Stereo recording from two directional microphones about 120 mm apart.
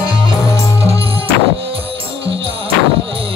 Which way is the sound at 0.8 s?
55° right (ahead or behind).